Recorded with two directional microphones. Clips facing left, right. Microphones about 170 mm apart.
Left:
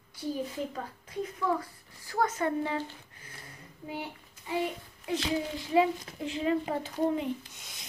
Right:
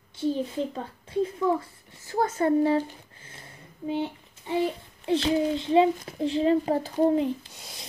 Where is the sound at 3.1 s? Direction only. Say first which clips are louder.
Right 2 dB; 25° right (ahead or behind).